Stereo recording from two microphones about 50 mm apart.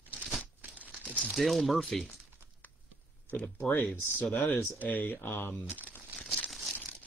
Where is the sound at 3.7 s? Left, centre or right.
Left.